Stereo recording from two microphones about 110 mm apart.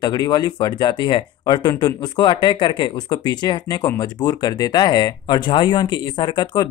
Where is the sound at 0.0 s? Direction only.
40° left (ahead or behind).